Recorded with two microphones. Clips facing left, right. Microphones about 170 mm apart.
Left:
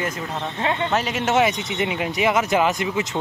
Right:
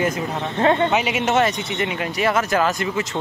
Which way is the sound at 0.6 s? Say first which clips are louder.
Right 7 dB; 40° right (ahead or behind).